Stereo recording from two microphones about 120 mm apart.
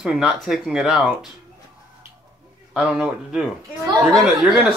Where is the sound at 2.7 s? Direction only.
5° right (ahead or behind).